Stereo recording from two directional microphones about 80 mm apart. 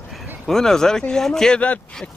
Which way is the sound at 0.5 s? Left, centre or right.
Centre.